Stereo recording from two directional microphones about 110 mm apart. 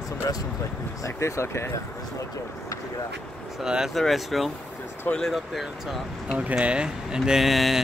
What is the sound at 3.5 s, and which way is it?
Speech, 5° right (ahead or behind).